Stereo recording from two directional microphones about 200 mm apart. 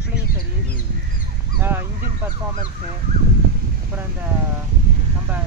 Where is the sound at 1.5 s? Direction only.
10° right (ahead or behind).